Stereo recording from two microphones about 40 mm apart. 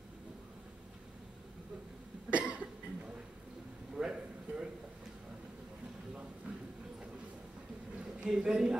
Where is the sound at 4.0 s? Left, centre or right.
Centre.